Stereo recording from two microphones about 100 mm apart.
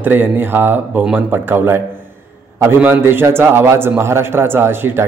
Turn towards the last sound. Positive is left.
turn(degrees=-25)  # may be behind; listen again after turning